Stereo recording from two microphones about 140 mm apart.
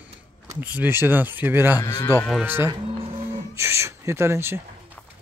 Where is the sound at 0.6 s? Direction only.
10° right (ahead or behind).